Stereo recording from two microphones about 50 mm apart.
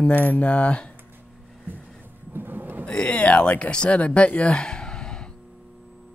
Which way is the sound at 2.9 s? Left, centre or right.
Left.